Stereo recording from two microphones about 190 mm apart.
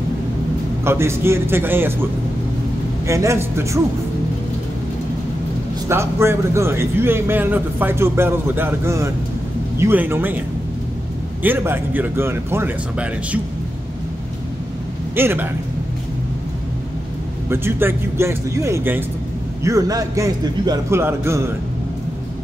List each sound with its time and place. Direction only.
0.8 s a man's voice: 15° right (ahead or behind)
3.1 s a man's voice: 15° right (ahead or behind)
5.9 s a man's voice: 15° right (ahead or behind)
11.4 s a man's voice: 10° right (ahead or behind)
15.1 s a man's voice: 10° right (ahead or behind)
17.5 s a man's voice: 10° right (ahead or behind)